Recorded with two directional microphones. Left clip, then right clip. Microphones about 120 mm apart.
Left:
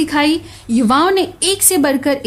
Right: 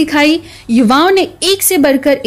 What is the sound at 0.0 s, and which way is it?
A woman's voice, 25° right (ahead or behind).